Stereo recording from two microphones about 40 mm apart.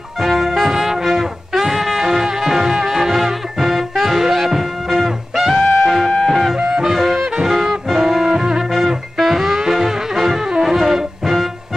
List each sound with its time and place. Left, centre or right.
0.2 s brass instrument: centre
6.0 s music: centre
6.3 s music: centre